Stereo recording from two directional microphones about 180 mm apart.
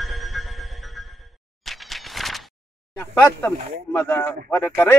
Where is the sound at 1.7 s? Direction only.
Centre (ahead or behind).